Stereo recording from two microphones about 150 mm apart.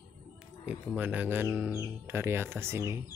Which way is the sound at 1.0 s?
10° right (ahead or behind).